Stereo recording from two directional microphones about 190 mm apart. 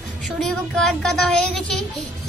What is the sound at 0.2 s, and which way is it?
Speech, 5° left (ahead or behind).